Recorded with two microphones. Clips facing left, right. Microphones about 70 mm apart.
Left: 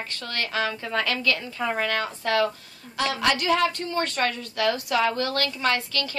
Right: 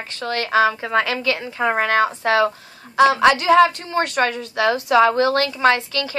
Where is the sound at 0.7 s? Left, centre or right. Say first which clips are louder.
Right 6 dB; right.